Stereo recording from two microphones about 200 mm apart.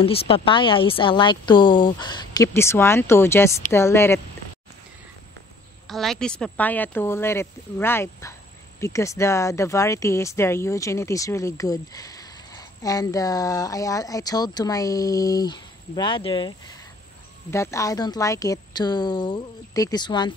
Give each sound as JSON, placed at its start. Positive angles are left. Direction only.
{"t": 0.0, "sound": "a woman's voice", "side_deg": 25}
{"t": 5.9, "sound": "a woman's voice", "side_deg": 0}
{"t": 17.5, "sound": "speech", "side_deg": 15}